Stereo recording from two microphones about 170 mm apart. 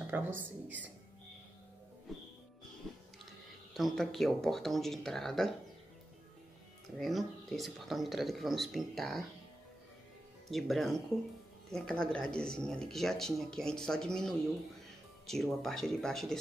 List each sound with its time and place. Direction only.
0.0 s speech: 10° right (ahead or behind)
2.1 s music: centre (ahead or behind)
3.7 s speech: centre (ahead or behind)
7.0 s speech: centre (ahead or behind)
10.5 s speech: centre (ahead or behind)